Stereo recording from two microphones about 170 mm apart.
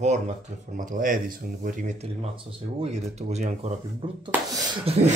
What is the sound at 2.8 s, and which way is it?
Speech, 40° right (ahead or behind).